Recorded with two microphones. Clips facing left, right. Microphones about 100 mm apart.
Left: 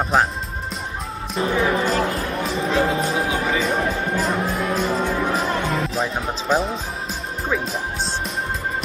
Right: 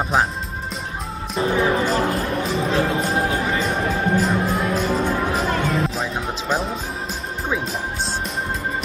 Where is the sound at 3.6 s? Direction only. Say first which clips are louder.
Even; centre (ahead or behind).